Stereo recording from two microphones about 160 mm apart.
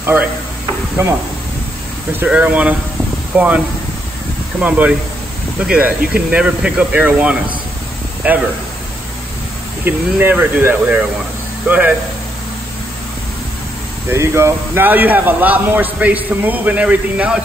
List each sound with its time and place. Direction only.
0.0 s insect: 10° right (ahead or behind)
2.1 s speech: 10° right (ahead or behind)
9.8 s speech: 10° right (ahead or behind)
14.0 s speech: 15° right (ahead or behind)